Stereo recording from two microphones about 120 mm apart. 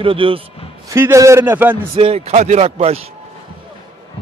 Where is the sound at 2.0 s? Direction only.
55° right (ahead or behind).